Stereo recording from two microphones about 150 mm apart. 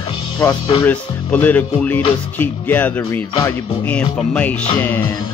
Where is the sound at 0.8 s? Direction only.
10° left (ahead or behind).